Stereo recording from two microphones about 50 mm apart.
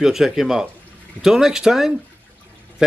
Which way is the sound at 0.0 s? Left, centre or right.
Centre.